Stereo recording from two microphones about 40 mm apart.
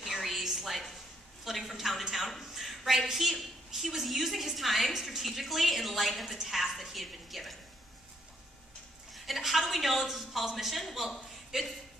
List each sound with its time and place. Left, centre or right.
0.0 s a sound: centre
3.1 s a woman's voice: centre
9.1 s a woman's voice: centre